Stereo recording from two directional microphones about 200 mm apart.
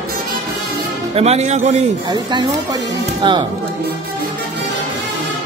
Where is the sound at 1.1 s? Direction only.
30° right (ahead or behind).